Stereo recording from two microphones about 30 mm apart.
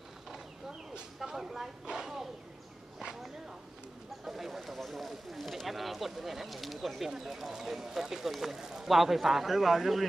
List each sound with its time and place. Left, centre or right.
0.7 s a sound: right
1.3 s speech: centre
4.2 s speech: centre